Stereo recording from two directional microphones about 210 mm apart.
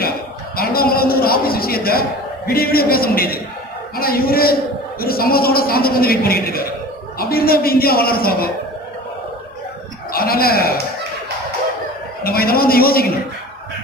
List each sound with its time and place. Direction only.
0.6 s a man's voice: 45° left (ahead or behind)
10.1 s a man's voice: 45° left (ahead or behind)
12.2 s a man's voice: 45° left (ahead or behind)